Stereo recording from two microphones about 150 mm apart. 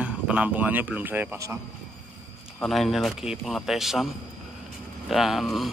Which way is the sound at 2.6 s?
Centre (ahead or behind).